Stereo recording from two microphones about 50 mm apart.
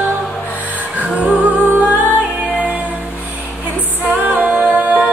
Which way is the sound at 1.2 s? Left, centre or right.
Right.